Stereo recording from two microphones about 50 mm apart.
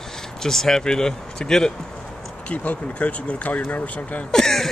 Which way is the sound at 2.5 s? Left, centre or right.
Left.